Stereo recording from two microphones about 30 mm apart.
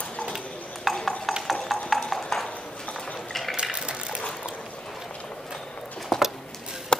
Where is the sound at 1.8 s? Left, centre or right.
Centre.